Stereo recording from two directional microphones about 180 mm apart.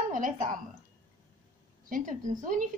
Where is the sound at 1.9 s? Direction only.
45° right (ahead or behind).